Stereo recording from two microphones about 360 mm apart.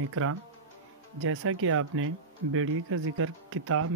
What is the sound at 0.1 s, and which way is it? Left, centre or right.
Speech, right.